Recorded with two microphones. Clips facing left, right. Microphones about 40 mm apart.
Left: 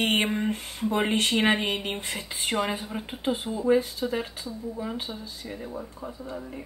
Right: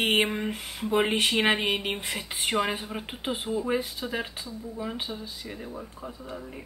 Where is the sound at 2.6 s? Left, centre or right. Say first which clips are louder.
Even; centre.